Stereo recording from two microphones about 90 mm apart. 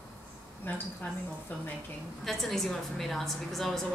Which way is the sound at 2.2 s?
Centre (ahead or behind).